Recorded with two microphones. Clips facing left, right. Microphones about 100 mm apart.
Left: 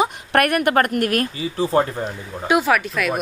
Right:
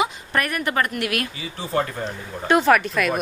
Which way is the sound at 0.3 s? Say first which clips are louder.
Left 7 dB; 65° left (ahead or behind).